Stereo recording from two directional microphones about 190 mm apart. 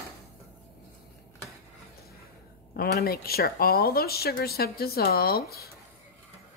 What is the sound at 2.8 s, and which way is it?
Speech, 55° left (ahead or behind).